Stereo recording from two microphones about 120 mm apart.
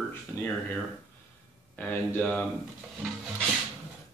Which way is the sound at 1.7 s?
15° left (ahead or behind).